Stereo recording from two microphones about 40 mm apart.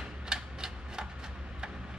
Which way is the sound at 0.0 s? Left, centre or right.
Centre.